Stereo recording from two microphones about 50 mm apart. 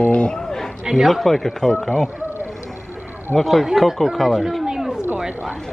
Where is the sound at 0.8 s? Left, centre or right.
Centre.